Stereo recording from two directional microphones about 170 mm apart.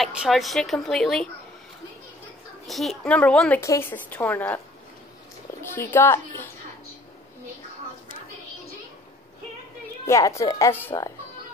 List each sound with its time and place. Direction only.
0.0 s a woman's voice: centre (ahead or behind)
2.6 s a woman's voice: centre (ahead or behind)
5.6 s a child's voice: 15° left (ahead or behind)
10.0 s a woman's voice: 15° left (ahead or behind)